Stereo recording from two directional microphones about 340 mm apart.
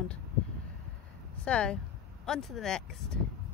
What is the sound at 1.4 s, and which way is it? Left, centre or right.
Speech, centre.